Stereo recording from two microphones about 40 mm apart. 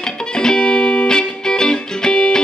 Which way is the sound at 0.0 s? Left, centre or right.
Centre.